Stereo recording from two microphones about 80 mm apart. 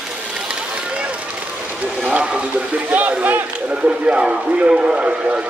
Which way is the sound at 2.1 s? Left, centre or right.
Centre.